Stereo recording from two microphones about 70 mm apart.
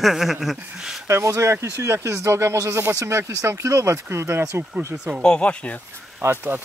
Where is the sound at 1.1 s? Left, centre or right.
Right.